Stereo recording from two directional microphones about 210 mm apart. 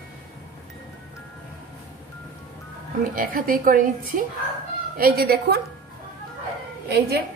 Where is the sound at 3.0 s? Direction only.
40° right (ahead or behind).